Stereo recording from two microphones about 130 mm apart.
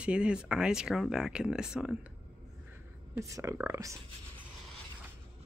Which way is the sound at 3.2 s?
25° right (ahead or behind).